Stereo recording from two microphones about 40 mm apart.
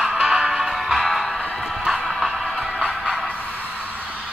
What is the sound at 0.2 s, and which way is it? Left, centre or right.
Music, right.